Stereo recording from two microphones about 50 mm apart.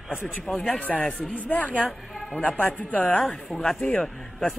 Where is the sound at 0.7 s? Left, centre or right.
Left.